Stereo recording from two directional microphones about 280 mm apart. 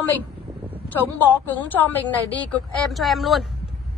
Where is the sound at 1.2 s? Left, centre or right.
Centre.